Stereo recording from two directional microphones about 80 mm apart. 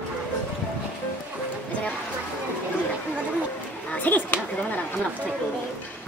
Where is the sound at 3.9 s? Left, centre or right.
Left.